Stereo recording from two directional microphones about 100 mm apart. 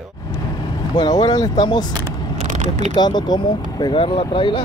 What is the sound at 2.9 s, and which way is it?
Speech, 45° left (ahead or behind).